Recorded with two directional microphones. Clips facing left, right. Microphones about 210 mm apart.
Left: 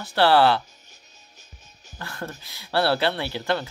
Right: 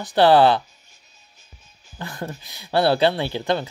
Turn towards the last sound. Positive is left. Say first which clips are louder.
# right 3 dB
turn(degrees=-20)  # may be behind; listen again after turning